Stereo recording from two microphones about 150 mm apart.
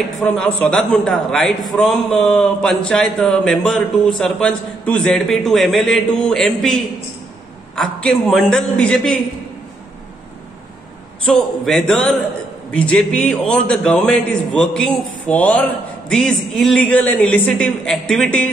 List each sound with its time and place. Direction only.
0.2 s a man's voice: 10° left (ahead or behind)
11.2 s a man's voice: 5° left (ahead or behind)